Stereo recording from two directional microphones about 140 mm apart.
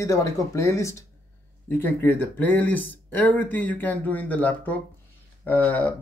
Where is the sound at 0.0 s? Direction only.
20° left (ahead or behind).